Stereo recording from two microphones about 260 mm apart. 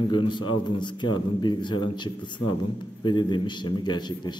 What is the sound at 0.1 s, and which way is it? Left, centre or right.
A man's voice, centre.